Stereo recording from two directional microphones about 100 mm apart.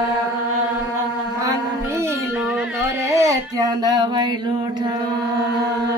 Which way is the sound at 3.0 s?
30° right (ahead or behind).